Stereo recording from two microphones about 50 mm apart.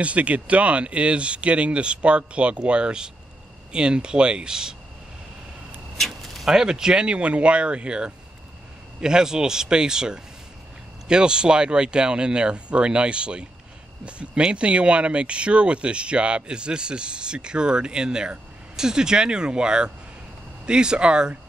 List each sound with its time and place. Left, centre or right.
0.0 s speech: right
5.9 s a sound: centre
6.4 s speech: centre